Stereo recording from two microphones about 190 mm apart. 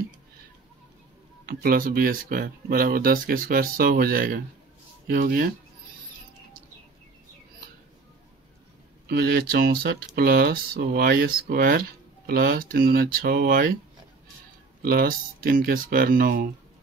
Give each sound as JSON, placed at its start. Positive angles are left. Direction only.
{"t": 1.4, "sound": "speech", "side_deg": -50}
{"t": 9.0, "sound": "speech", "side_deg": -55}
{"t": 14.8, "sound": "speech", "side_deg": -50}